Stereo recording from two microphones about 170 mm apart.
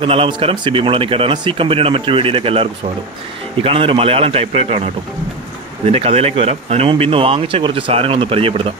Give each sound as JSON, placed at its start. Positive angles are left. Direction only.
{"t": 0.0, "sound": "speech", "side_deg": -30}
{"t": 5.9, "sound": "speech", "side_deg": -35}